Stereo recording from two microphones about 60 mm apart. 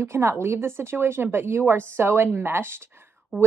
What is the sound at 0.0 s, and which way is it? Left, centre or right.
A woman's voice, right.